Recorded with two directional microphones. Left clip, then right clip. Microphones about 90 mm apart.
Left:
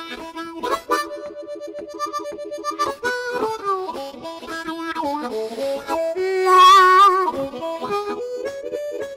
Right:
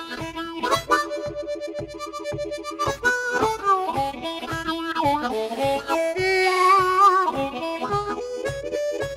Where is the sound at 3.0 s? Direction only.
5° left (ahead or behind).